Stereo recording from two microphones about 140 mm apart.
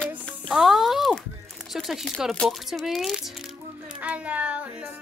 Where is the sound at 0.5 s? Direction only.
Centre (ahead or behind).